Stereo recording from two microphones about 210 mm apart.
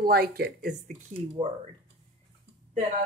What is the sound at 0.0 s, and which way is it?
Speech, 45° right (ahead or behind).